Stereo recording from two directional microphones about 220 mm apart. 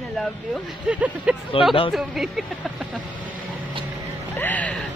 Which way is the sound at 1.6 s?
25° left (ahead or behind).